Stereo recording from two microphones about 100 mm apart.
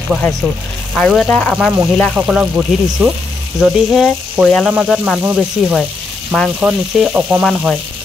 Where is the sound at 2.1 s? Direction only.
15° right (ahead or behind).